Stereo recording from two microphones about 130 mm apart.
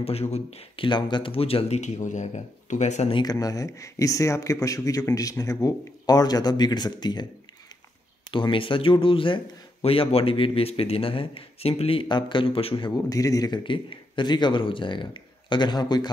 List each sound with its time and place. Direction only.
0.0 s speech: 55° left (ahead or behind)
0.8 s speech: 35° left (ahead or behind); by 3.1 s 65° left (ahead or behind)
3.1 s speech: 30° left (ahead or behind)
8.3 s a man's voice: 40° left (ahead or behind)